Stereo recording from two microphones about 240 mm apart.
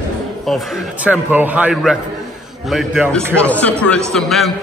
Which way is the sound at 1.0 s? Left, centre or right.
Centre.